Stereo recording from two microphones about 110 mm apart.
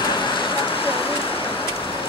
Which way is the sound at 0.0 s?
45° left (ahead or behind).